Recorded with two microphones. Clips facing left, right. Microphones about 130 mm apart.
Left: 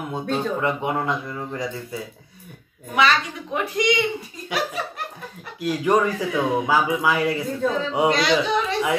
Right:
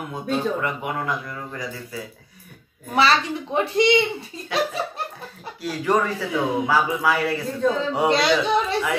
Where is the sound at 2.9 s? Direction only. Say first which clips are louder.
Right 1 dB; 35° right (ahead or behind).